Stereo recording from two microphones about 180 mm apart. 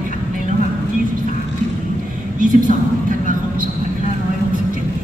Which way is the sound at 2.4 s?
50° right (ahead or behind).